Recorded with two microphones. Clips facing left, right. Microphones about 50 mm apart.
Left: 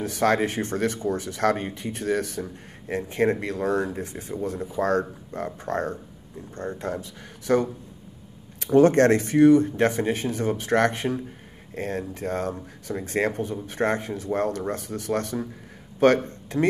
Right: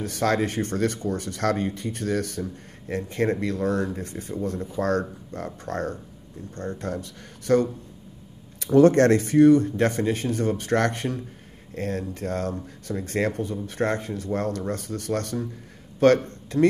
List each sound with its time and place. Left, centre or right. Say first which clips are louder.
0.0 s speech: left 2 dB; centre
8.7 s speech: right 1 dB; centre